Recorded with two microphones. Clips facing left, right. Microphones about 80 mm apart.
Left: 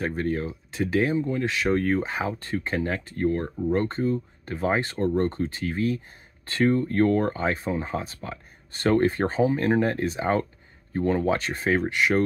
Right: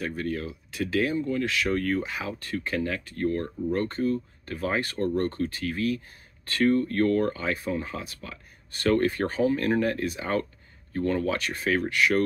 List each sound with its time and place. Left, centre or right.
0.0 s speech: left